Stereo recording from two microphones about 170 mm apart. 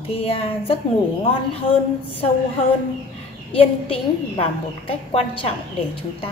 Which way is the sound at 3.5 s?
35° left (ahead or behind).